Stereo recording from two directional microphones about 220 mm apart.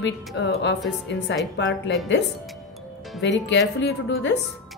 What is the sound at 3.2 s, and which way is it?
Speech, 55° left (ahead or behind).